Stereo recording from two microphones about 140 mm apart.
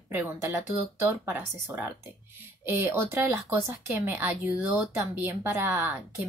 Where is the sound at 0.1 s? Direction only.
15° right (ahead or behind).